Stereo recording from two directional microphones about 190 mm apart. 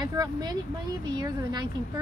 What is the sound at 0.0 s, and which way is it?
A woman's voice, 20° right (ahead or behind).